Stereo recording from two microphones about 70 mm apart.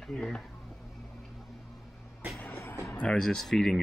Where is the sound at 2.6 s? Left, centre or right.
Left.